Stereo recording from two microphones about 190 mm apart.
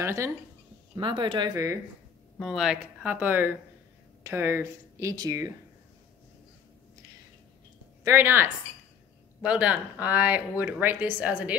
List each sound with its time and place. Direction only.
0.0 s speech: 15° right (ahead or behind)
0.9 s speech: 25° right (ahead or behind)
2.3 s speech: centre (ahead or behind); by 5.5 s 20° right (ahead or behind)
8.0 s speech: 10° right (ahead or behind)